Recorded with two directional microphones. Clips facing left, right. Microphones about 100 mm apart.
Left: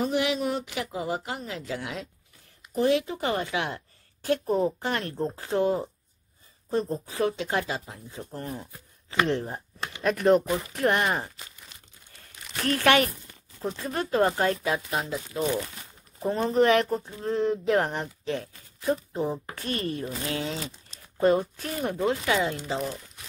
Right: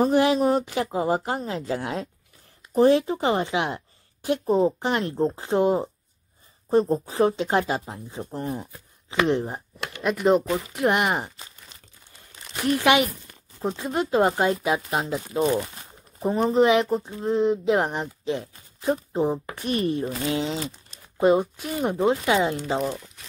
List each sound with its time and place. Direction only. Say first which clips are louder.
0.0 s a woman's voice: right 7 dB; 40° right (ahead or behind)
8.4 s a woman's voice: right 6 dB; 20° right (ahead or behind)
10.0 s speech: right 1 dB; 5° right (ahead or behind)
12.5 s a woman's voice: right 2 dB; 15° right (ahead or behind); by 15.6 s 35° right (ahead or behind)
16.2 s a woman's voice: right 3 dB; 15° right (ahead or behind)
21.9 s a woman's voice: right 4 dB; 25° right (ahead or behind)